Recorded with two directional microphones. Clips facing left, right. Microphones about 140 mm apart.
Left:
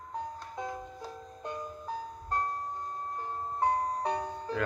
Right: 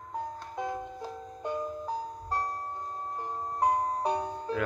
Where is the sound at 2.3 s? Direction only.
10° right (ahead or behind).